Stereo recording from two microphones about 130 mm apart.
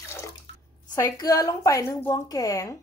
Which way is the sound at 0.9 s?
30° left (ahead or behind).